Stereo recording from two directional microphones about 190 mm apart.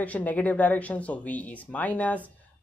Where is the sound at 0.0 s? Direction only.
10° left (ahead or behind).